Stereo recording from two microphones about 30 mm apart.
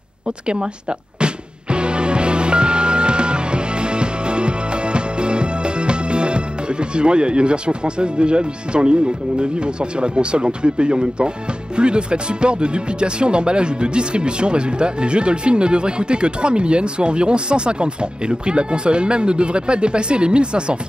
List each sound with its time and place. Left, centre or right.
1.2 s music: right